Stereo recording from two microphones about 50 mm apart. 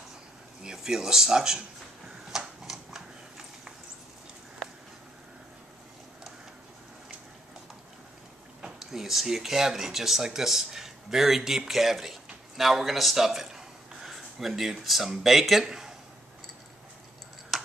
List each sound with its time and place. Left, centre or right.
0.7 s speech: centre
2.0 s a sound: centre
8.6 s speech: centre